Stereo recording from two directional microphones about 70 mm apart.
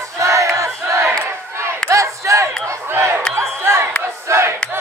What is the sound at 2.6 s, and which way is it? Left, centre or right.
Crowd, right.